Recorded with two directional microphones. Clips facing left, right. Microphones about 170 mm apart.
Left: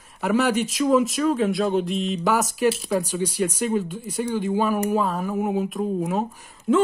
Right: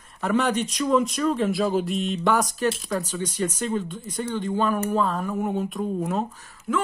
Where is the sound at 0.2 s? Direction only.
5° left (ahead or behind).